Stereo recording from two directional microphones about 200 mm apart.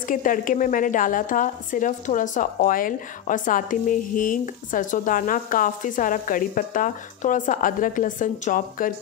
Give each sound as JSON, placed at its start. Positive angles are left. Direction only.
{"t": 0.1, "sound": "a woman's voice", "side_deg": 40}